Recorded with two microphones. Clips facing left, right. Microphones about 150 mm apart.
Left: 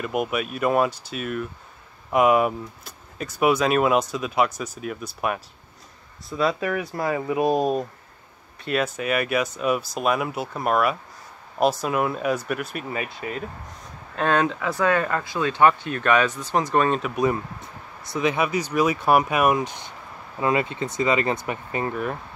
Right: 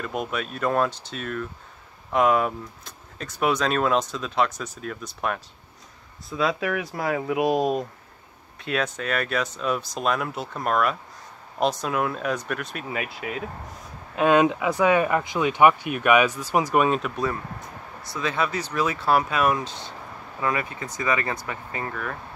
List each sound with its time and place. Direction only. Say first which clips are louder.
0.0 s speech: left 4 dB; 10° left (ahead or behind); by 17.0 s 10° right (ahead or behind)
18.0 s speech: left 4 dB; 20° left (ahead or behind)